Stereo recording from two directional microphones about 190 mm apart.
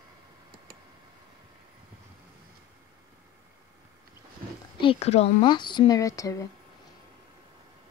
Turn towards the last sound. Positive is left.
turn(degrees=15)  # may be behind; listen again after turning